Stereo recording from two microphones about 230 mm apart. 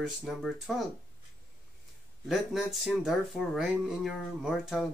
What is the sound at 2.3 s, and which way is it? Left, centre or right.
Speech, centre.